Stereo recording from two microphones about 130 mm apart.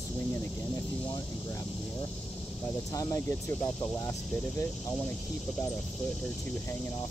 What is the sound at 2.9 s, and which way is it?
Speech, 25° left (ahead or behind).